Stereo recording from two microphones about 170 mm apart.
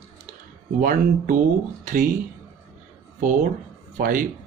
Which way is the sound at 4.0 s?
50° right (ahead or behind).